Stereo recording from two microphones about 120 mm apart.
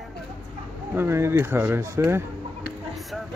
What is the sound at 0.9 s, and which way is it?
Speech, 20° right (ahead or behind).